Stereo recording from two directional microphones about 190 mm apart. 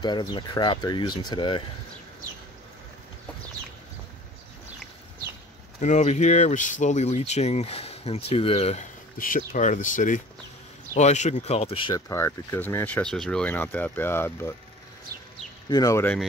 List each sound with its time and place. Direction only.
0.0 s speech: 25° left (ahead or behind)
5.8 s speech: 40° left (ahead or behind)
9.2 s speech: 45° left (ahead or behind); by 12.0 s 30° left (ahead or behind)
12.1 s speech: 15° left (ahead or behind)
15.7 s speech: 15° left (ahead or behind)